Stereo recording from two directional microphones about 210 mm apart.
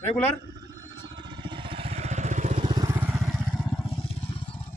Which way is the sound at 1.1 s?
20° right (ahead or behind).